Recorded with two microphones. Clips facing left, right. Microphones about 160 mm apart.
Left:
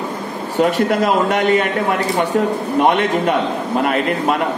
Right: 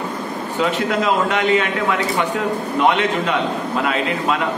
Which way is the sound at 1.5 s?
45° left (ahead or behind).